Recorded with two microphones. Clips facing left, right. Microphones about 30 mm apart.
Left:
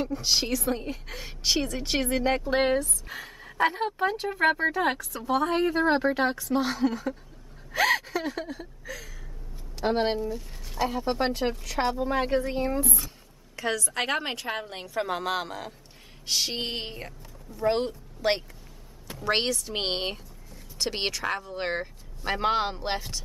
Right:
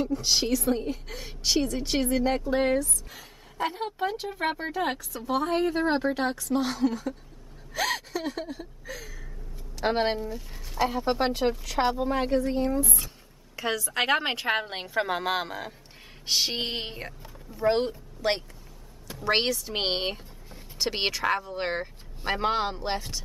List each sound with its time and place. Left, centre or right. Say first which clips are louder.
0.0 s a woman's voice: right 1 dB; centre; by 3.7 s left
3.7 s a woman's voice: left 3 dB; centre
10.0 s speech: left 1 dB; centre
12.1 s a woman's voice: even; centre
12.4 s speech: right 2 dB; centre
13.6 s a woman's voice: right 1 dB; centre; by 14.9 s right
15.0 s a woman's voice: right 1 dB; centre
18.2 s speech: left 1 dB; centre
19.1 s speech: right 1 dB; centre